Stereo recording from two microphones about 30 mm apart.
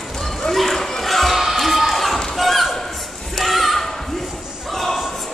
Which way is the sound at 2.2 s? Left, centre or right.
Centre.